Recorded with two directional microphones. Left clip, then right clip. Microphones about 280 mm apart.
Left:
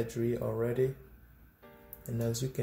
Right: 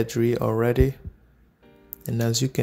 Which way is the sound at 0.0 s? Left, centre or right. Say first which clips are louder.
Right 10 dB; right.